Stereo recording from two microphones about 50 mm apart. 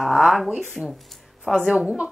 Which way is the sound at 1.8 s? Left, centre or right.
Right.